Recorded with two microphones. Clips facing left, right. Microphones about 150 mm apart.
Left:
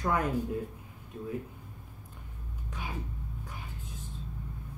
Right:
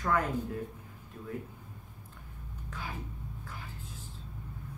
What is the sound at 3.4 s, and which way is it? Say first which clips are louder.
Whispering: left 1 dB; 20° left (ahead or behind).